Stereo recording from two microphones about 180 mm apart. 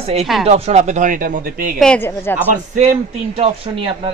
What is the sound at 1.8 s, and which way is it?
Speech, 10° left (ahead or behind).